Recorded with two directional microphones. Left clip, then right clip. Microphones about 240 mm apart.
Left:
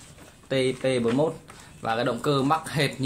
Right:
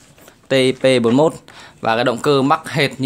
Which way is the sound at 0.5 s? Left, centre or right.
Right.